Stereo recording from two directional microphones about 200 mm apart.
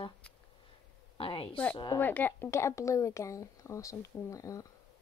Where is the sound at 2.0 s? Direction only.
10° left (ahead or behind).